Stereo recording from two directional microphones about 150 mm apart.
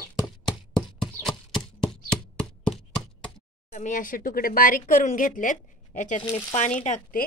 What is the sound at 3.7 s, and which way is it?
Speech, 55° left (ahead or behind).